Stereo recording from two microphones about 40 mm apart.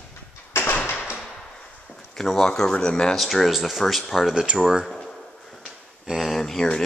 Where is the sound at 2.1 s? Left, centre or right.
Centre.